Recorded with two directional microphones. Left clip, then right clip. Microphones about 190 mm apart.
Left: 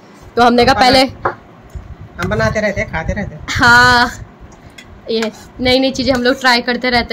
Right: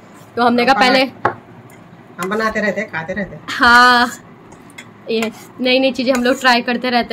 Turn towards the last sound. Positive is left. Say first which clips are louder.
# left 2 dB
turn(degrees=15)  # may be behind; listen again after turning